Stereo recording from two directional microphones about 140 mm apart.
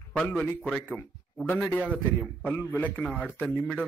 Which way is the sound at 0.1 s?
10° left (ahead or behind).